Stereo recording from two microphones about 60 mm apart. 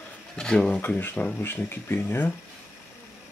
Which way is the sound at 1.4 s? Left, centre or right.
Left.